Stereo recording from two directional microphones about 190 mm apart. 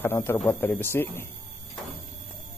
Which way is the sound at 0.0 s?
10° left (ahead or behind).